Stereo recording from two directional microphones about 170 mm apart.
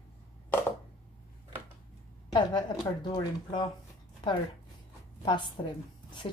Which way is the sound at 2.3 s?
25° left (ahead or behind).